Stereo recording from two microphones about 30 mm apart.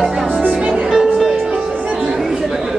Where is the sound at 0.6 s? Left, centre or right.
Right.